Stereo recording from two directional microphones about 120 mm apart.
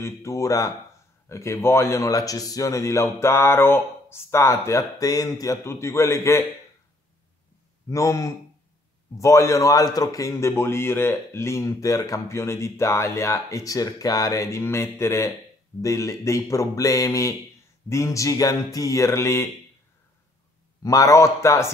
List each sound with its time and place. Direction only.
0.0 s a man's voice: 25° left (ahead or behind)
7.9 s a man's voice: 25° left (ahead or behind)
20.8 s a man's voice: 30° left (ahead or behind)